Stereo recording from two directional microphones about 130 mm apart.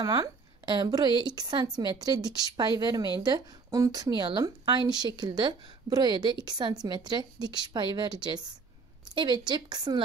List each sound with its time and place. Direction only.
0.0 s a woman's voice: 30° right (ahead or behind)